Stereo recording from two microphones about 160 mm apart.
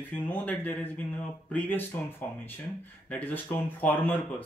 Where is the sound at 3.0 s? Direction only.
10° left (ahead or behind).